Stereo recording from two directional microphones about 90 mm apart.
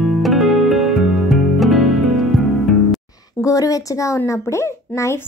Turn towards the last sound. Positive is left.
turn(degrees=30)  # may be behind; listen again after turning